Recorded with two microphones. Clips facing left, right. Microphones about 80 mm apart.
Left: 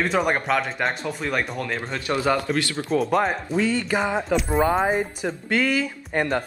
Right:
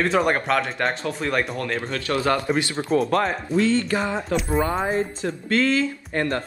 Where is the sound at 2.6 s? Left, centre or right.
Right.